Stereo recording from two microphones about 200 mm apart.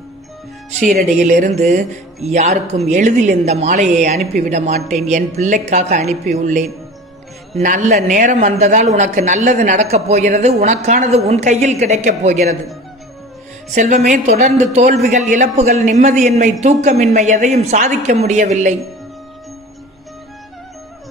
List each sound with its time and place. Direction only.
0.9 s speech: 40° right (ahead or behind)
13.7 s speech: 35° right (ahead or behind)